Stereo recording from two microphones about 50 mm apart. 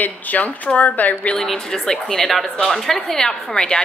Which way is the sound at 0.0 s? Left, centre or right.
Left.